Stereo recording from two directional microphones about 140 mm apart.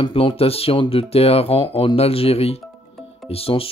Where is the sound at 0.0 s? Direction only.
40° left (ahead or behind).